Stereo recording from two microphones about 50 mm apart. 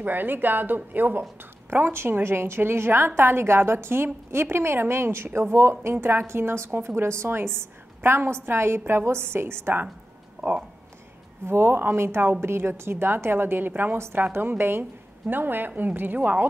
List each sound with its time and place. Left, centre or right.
0.0 s a woman's voice: right
13.9 s a woman's voice: right
14.6 s a woman's voice: right